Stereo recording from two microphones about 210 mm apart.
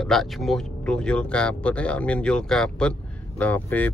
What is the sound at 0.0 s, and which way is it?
Speech, centre (ahead or behind).